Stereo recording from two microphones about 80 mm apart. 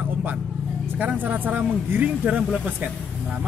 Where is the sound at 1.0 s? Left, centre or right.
Right.